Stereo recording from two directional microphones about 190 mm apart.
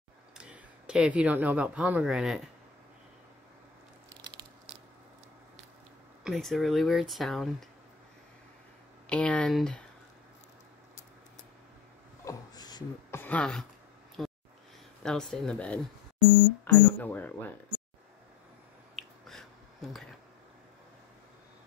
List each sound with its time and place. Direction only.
0.4 s speech: 5° right (ahead or behind)
4.1 s biting: 15° right (ahead or behind)
6.2 s speech: centre (ahead or behind)
9.1 s speech: 5° left (ahead or behind)
12.3 s a sound: 20° left (ahead or behind)
13.2 s speech: 5° left (ahead or behind)
14.2 s a sound: centre (ahead or behind)
15.0 s speech: 5° left (ahead or behind)
18.9 s a sound: centre (ahead or behind)